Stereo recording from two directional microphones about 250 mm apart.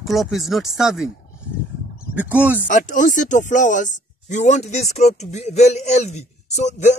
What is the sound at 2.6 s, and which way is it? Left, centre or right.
Speech, left.